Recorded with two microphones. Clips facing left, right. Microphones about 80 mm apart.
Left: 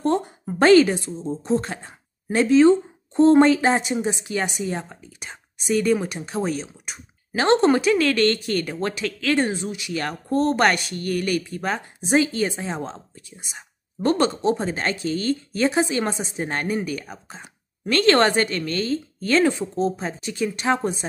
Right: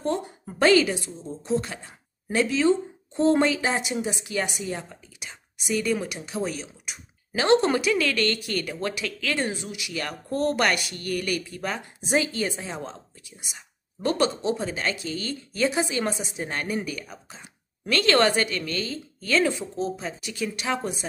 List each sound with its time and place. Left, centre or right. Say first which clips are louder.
0.6 s speech: left 5 dB; left